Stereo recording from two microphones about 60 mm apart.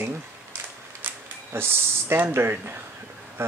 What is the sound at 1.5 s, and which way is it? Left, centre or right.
Speech, right.